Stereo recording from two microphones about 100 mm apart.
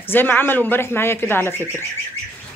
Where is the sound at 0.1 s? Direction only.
20° left (ahead or behind).